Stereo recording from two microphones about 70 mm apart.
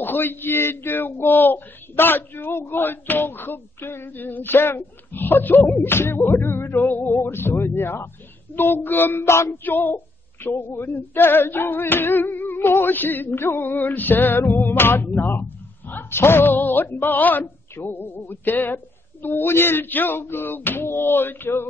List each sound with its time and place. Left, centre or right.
0.0 s speech: left
9.5 s female singing: left
19.2 s speech: left